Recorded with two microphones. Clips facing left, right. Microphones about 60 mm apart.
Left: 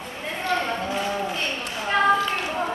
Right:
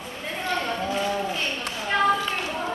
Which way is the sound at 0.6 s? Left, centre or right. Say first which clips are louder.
Even; centre.